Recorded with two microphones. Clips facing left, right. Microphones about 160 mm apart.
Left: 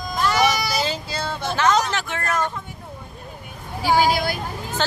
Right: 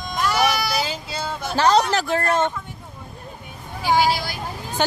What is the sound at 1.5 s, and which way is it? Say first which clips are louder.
Speech: right 3 dB; 35° right (ahead or behind).